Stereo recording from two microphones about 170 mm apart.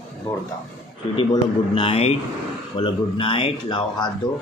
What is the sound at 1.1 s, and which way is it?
A man's voice, 30° left (ahead or behind).